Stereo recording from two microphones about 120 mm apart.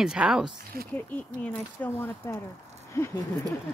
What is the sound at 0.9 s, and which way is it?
Speech, 10° left (ahead or behind).